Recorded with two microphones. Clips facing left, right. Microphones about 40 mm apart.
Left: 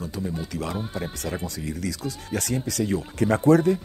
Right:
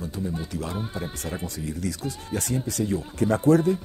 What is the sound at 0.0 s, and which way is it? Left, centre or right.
Speech, left.